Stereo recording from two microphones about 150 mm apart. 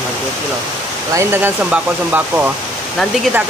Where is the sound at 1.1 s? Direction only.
15° right (ahead or behind).